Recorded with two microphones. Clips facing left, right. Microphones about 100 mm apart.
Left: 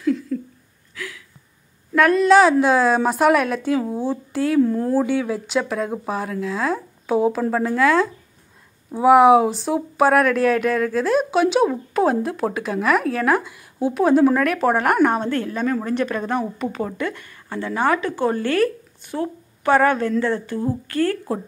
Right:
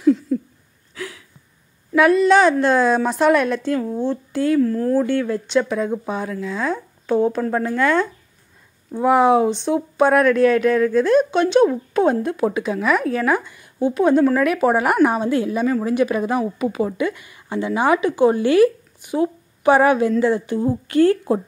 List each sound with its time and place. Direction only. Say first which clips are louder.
0.0 s a sound: right 5 dB; 20° right (ahead or behind)
2.0 s speech: even; centre (ahead or behind)
4.6 s speech: left 3 dB; 25° left (ahead or behind)
4.9 s speech: right 1 dB; 5° left (ahead or behind); by 21.4 s 20° right (ahead or behind)